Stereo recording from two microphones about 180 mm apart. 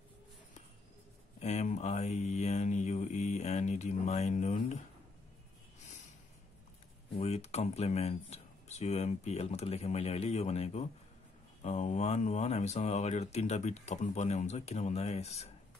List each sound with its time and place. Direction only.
1.4 s mantra: 40° left (ahead or behind)
7.2 s speech: 35° left (ahead or behind)